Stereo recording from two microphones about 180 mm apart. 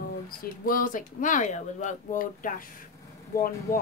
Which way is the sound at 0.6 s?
50° left (ahead or behind).